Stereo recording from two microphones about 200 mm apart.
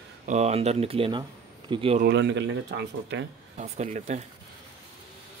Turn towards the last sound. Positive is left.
turn(degrees=-35)  # may be behind; listen again after turning